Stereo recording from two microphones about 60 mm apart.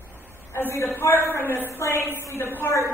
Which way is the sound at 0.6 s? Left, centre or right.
Left.